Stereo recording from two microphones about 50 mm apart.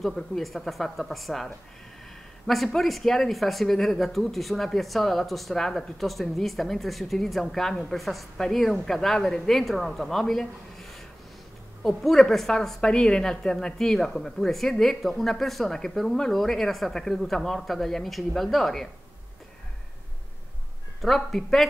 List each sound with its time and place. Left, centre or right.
0.0 s a woman's voice: centre
21.0 s a woman's voice: centre